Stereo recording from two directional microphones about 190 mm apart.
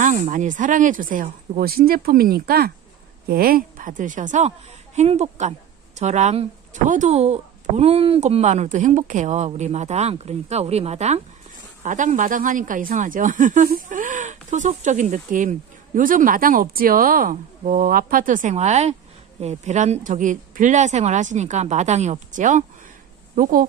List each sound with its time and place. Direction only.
0.0 s speech: 40° right (ahead or behind)